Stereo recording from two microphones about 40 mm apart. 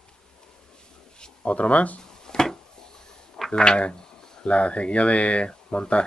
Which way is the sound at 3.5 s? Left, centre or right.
Left.